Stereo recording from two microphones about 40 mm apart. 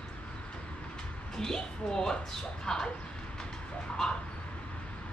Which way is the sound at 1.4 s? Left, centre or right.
Centre.